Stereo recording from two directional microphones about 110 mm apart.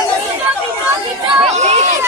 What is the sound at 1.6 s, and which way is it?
Chatter, 90° right.